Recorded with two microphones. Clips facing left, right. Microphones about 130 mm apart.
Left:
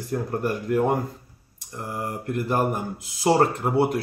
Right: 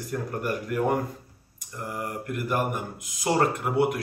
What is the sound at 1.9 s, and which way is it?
Speech, 30° left (ahead or behind).